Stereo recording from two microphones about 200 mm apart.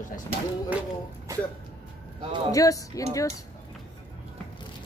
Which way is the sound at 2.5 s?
15° left (ahead or behind).